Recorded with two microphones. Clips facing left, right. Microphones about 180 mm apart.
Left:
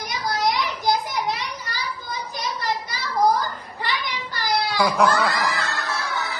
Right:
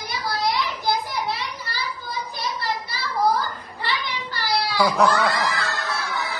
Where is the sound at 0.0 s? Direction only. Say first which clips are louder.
Left 2 dB; 20° left (ahead or behind).